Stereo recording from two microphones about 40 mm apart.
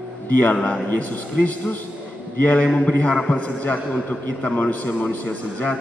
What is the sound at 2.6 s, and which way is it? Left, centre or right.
Speech, left.